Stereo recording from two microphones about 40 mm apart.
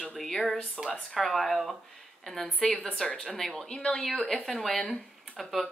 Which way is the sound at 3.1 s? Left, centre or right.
Left.